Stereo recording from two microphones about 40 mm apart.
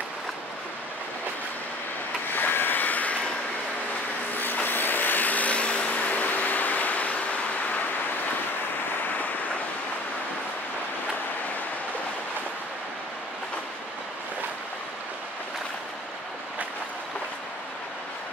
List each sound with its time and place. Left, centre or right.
2.3 s vehicle: left
4.4 s vehicle: left
5.9 s vehicle: left